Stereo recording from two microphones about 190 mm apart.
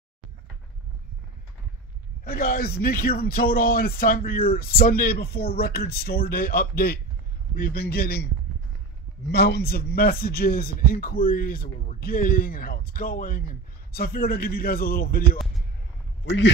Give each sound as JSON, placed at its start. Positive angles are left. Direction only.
{"t": 2.2, "sound": "a man's voice", "side_deg": 50}
{"t": 9.3, "sound": "a man's voice", "side_deg": 55}
{"t": 16.3, "sound": "speech", "side_deg": 70}